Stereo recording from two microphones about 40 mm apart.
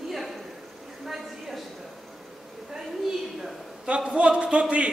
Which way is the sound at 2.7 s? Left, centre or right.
Centre.